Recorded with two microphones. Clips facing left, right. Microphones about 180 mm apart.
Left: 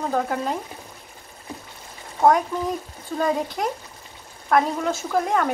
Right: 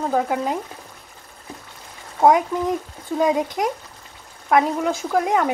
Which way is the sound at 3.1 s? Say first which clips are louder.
Right 4 dB; 15° right (ahead or behind).